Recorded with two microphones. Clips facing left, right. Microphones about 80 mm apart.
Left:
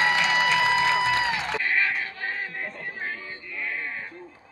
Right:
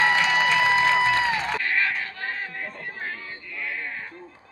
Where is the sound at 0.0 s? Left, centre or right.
Right.